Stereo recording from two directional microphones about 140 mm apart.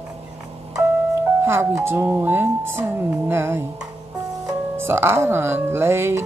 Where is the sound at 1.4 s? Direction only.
20° right (ahead or behind).